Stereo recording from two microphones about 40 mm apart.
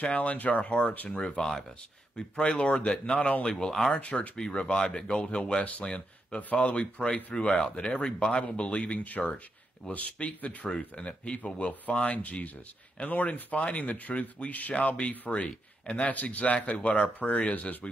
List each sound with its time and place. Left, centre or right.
0.0 s speech: left
1.1 s speech: centre
3.4 s speech: centre
3.9 s speech: left
4.4 s speech: left
5.6 s speech: left
5.9 s speech: left
12.0 s speech: left